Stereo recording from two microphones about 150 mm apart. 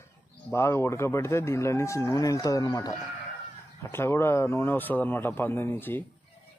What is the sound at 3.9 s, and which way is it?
A man's voice, 15° left (ahead or behind).